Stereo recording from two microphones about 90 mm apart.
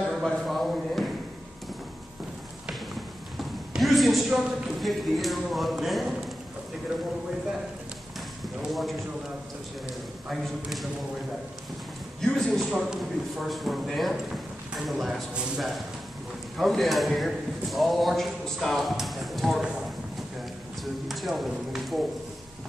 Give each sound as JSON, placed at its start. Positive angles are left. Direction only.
{"t": 0.0, "sound": "a sound", "side_deg": 0}
{"t": 2.9, "sound": "speech", "side_deg": 0}
{"t": 10.2, "sound": "a man's voice", "side_deg": 0}
{"t": 12.2, "sound": "a man's voice", "side_deg": 10}
{"t": 20.8, "sound": "a man's voice", "side_deg": 0}